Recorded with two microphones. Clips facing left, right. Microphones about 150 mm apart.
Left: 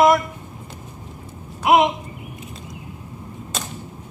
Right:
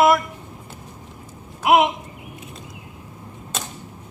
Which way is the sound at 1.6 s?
5° right (ahead or behind).